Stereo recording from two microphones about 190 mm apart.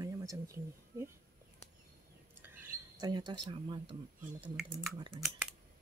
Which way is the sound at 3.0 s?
25° right (ahead or behind).